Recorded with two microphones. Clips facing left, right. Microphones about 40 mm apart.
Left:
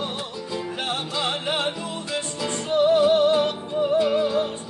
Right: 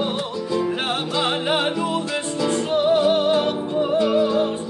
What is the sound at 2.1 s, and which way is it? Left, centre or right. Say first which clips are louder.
Music: right 5 dB; centre.